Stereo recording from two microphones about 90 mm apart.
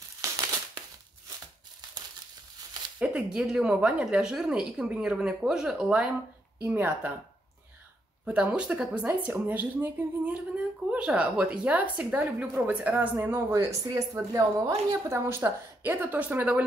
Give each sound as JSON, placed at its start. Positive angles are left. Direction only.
{"t": 3.0, "sound": "speech", "side_deg": -10}
{"t": 6.6, "sound": "speech", "side_deg": -25}
{"t": 8.3, "sound": "speech", "side_deg": -15}